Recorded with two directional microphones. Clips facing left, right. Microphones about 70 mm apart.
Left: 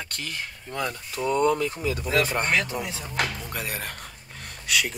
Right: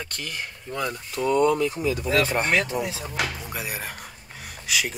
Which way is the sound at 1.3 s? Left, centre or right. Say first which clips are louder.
Right 2 dB; left.